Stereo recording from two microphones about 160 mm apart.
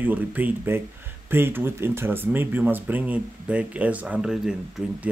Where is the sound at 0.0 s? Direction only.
10° right (ahead or behind).